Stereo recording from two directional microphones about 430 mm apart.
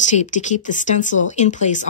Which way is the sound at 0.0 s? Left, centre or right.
Centre.